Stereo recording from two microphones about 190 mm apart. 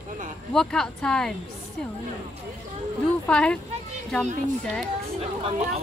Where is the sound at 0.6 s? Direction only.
5° left (ahead or behind).